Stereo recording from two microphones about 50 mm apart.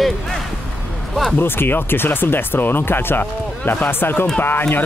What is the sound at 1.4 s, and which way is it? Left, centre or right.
Speech, left.